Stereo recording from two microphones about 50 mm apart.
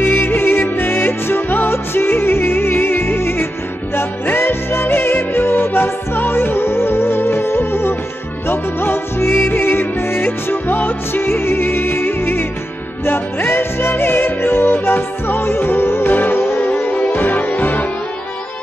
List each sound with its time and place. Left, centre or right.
0.0 s music: left
4.8 s music: left